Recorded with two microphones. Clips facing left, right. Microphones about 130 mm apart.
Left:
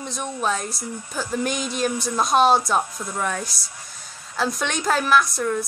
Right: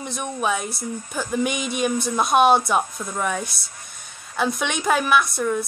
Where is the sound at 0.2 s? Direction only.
5° right (ahead or behind).